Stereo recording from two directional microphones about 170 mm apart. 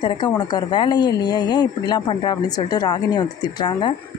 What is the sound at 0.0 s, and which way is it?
A woman's voice, 25° left (ahead or behind).